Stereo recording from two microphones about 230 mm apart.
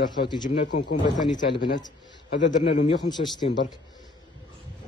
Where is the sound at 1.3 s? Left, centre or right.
Centre.